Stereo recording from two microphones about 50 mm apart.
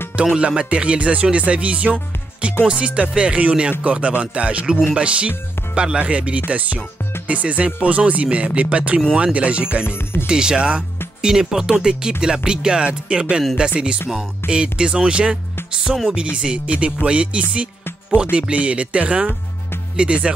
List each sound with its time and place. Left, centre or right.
0.1 s speech: right
9.8 s speech: left
10.2 s music: centre
14.5 s speech: right